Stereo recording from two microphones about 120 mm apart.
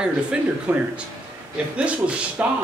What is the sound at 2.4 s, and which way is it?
Speech, 10° right (ahead or behind).